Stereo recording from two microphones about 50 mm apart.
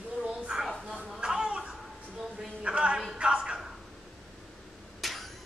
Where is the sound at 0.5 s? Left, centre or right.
Centre.